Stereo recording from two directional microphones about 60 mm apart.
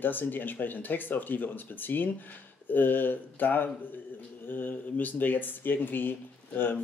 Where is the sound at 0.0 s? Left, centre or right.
Left.